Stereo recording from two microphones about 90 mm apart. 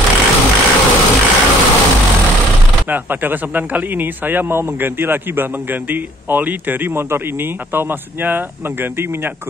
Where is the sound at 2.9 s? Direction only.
20° right (ahead or behind).